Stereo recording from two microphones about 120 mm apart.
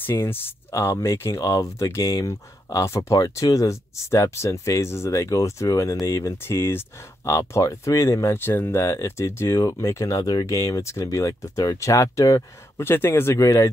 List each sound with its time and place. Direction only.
0.0 s speech: 20° left (ahead or behind)